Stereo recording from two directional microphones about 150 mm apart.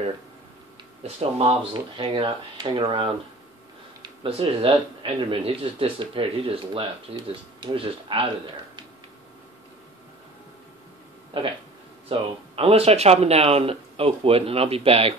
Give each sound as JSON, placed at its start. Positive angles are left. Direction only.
{"t": 1.0, "sound": "speech", "side_deg": -40}
{"t": 11.3, "sound": "speech", "side_deg": -40}